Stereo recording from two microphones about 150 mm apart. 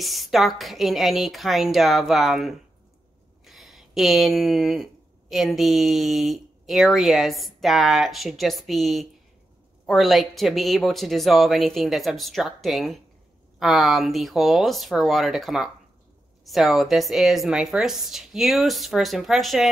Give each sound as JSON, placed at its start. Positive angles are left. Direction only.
{"t": 0.0, "sound": "speech", "side_deg": 0}